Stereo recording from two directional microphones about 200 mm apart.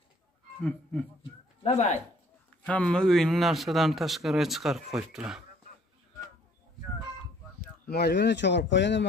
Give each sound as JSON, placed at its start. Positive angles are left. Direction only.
{"t": 0.6, "sound": "speech", "side_deg": 5}
{"t": 1.6, "sound": "speech", "side_deg": 30}
{"t": 2.6, "sound": "speech", "side_deg": 5}
{"t": 7.9, "sound": "speech", "side_deg": 55}